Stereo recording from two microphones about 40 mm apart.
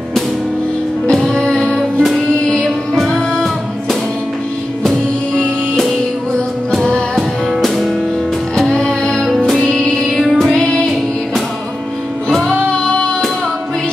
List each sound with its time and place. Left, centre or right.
1.1 s music: centre
2.9 s music: centre
7.2 s music: centre
8.5 s music: centre
10.3 s child singing: centre
12.4 s female singing: left